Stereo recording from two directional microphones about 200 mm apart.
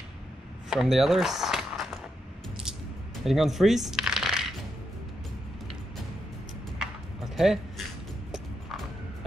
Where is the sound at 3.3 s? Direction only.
Centre (ahead or behind).